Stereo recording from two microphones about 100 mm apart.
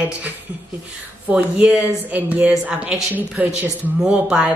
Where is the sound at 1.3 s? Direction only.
15° right (ahead or behind).